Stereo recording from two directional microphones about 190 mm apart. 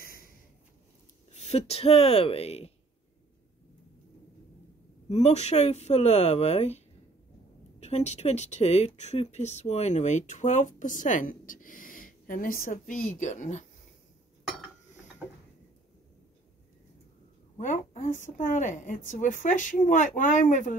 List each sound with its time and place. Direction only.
1.3 s speech: 35° left (ahead or behind)
5.1 s speech: 35° left (ahead or behind)
7.8 s speech: 35° left (ahead or behind)
17.6 s speech: 40° left (ahead or behind)